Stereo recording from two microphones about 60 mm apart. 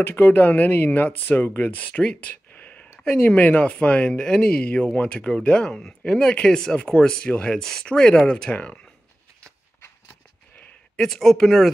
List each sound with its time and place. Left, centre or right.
0.0 s speech: left; by 8.5 s centre
11.0 s speech: centre